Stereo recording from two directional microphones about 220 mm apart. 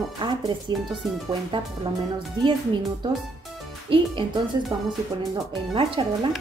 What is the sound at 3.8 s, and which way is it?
Speech, 20° right (ahead or behind).